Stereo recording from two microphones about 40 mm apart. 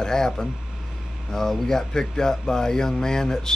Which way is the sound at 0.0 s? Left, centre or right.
Centre.